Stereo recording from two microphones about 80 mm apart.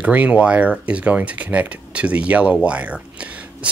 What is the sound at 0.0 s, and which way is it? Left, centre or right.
Speech, centre.